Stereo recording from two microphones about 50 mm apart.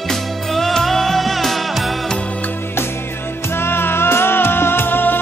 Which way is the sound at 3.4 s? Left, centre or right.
Left.